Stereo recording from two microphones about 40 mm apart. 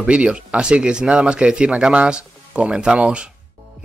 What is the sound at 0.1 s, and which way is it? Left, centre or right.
A man's voice, right.